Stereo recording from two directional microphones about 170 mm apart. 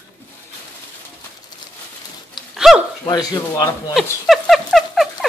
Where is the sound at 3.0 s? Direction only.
20° left (ahead or behind).